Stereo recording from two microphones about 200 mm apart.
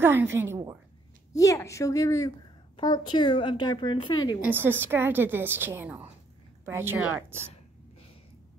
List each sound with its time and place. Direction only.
0.0 s a woman's voice: 10° right (ahead or behind)
1.3 s a woman's voice: 15° left (ahead or behind)
4.5 s a woman's voice: 10° right (ahead or behind)